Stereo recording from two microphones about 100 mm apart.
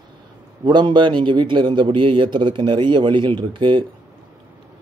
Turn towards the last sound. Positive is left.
turn(degrees=-55)  # may be behind; listen again after turning